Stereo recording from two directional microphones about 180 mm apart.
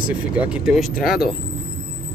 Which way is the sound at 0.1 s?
5° right (ahead or behind).